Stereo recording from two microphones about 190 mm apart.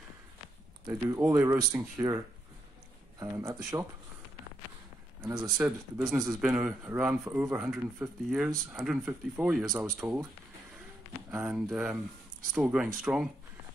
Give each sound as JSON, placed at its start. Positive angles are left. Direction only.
{"t": 0.8, "sound": "speech", "side_deg": -15}
{"t": 3.2, "sound": "speech", "side_deg": -20}
{"t": 5.2, "sound": "speech", "side_deg": -10}
{"t": 11.2, "sound": "speech", "side_deg": -5}